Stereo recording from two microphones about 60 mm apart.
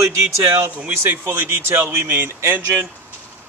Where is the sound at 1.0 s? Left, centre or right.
Right.